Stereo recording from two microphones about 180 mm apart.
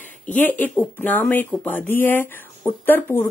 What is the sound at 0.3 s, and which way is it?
Speech, 10° left (ahead or behind).